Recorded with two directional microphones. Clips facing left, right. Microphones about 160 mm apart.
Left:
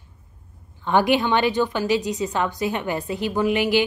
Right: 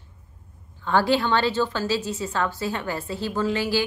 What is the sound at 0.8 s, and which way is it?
A woman's voice, 15° left (ahead or behind).